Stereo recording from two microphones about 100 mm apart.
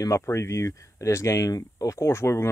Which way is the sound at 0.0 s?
30° left (ahead or behind).